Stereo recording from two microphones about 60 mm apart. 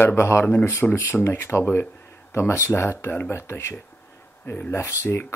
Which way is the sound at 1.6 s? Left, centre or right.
Left.